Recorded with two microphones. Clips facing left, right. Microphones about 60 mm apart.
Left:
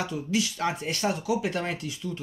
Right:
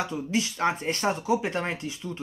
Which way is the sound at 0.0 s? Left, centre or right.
Right.